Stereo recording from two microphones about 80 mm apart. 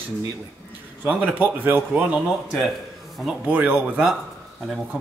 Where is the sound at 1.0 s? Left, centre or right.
Right.